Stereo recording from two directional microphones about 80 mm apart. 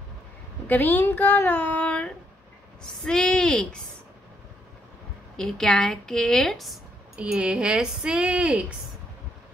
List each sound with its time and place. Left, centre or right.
0.7 s a woman's voice: left
5.4 s a woman's voice: centre
7.2 s speech: centre